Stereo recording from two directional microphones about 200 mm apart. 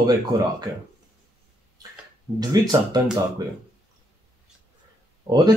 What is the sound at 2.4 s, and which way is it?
Speech, 20° right (ahead or behind).